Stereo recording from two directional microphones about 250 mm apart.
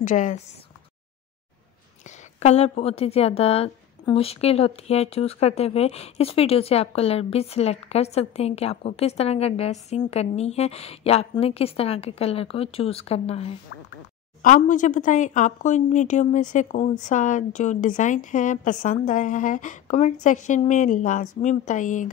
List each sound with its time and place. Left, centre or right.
0.0 s a woman's voice: left
2.0 s a woman's voice: left